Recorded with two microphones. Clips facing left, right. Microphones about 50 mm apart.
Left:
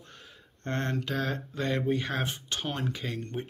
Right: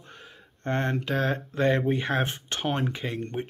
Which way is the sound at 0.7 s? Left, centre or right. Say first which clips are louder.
Right 4 dB; centre.